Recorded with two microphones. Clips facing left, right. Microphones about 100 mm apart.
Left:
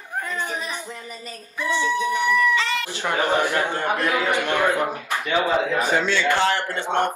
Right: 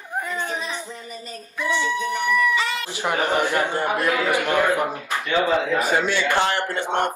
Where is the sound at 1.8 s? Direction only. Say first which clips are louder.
Left 4 dB; 15° left (ahead or behind).